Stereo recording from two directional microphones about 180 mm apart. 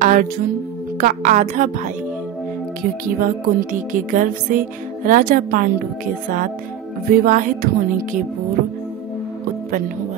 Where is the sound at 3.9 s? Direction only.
45° right (ahead or behind).